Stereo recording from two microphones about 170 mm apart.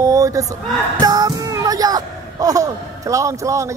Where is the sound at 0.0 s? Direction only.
20° right (ahead or behind).